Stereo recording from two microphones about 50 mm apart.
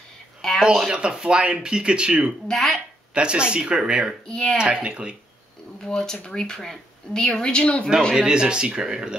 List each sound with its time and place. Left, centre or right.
0.4 s a sound: centre
0.9 s speech: right
2.5 s speech: centre
3.2 s speech: right
4.3 s speech: centre
4.6 s speech: centre
5.8 s speech: centre
8.3 s speech: centre